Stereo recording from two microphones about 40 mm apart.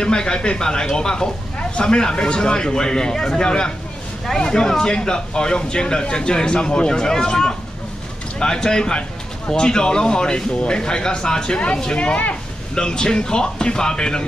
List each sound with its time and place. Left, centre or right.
0.0 s speech: left
12.7 s speech: centre